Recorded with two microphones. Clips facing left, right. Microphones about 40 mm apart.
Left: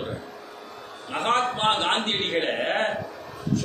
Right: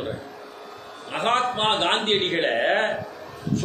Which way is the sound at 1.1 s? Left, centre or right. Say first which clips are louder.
Right 1 dB; right.